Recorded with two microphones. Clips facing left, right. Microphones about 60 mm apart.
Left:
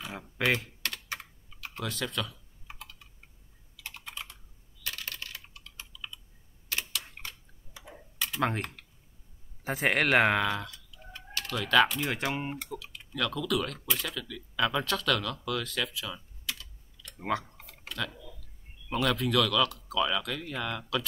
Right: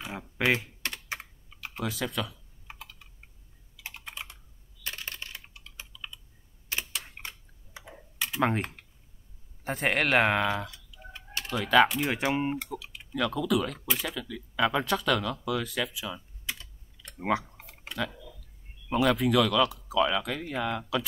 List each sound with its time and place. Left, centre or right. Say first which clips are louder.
0.0 s speech: right 2 dB; centre
0.8 s computer keyboard: right 1 dB; right
1.7 s typing: right 2 dB; centre
3.7 s computer keyboard: right 1 dB; centre
4.8 s computer keyboard: right 1 dB; right
6.7 s camera: even; right
8.2 s speech: right 3 dB; centre
9.7 s speech: even; centre
10.4 s tick-tock: right 2 dB; centre
11.3 s speech: right 2 dB; centre
17.3 s typing: right 3 dB; centre
18.9 s speech: right 4 dB; centre